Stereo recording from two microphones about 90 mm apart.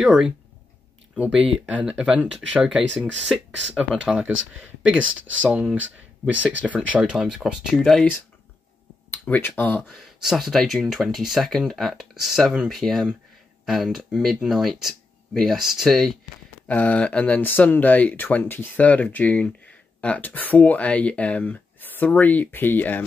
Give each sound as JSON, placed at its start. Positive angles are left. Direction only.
{"t": 0.0, "sound": "speech", "side_deg": -5}
{"t": 1.7, "sound": "speech", "side_deg": -15}
{"t": 5.4, "sound": "speech", "side_deg": -15}
{"t": 7.7, "sound": "speech", "side_deg": 5}
{"t": 9.1, "sound": "speech", "side_deg": 20}
{"t": 9.8, "sound": "speech", "side_deg": 0}
{"t": 16.6, "sound": "speech", "side_deg": 20}